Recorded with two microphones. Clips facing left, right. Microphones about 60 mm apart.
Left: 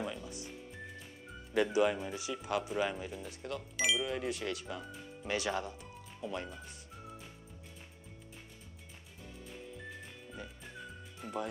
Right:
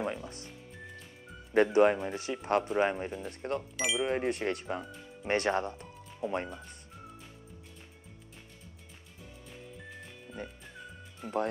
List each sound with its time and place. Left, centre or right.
0.0 s music: right
1.5 s speech: right
3.7 s speech: centre
4.0 s speech: right
10.3 s music: centre